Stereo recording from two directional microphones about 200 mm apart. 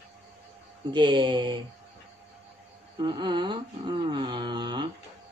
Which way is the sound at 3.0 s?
25° right (ahead or behind).